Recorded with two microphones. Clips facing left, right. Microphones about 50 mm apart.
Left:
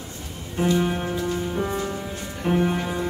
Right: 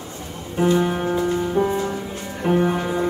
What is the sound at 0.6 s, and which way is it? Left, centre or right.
Music, right.